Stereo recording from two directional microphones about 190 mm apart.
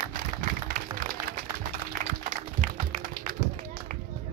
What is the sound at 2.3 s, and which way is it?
Music, 45° right (ahead or behind).